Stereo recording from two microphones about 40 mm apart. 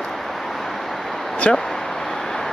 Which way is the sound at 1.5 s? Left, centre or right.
Left.